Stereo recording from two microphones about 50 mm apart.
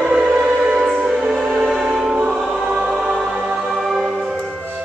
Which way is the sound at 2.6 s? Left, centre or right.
Right.